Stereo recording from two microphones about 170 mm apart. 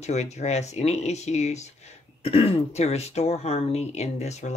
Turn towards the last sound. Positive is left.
turn(degrees=40)  # may be behind; listen again after turning